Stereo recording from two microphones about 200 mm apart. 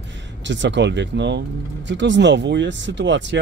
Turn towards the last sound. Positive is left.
turn(degrees=-65)  # may be behind; listen again after turning